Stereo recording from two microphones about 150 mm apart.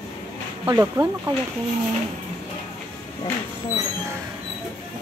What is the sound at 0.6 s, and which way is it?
Speech, 20° right (ahead or behind).